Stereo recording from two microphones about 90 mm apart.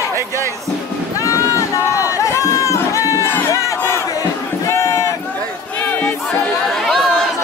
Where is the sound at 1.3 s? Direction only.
35° left (ahead or behind).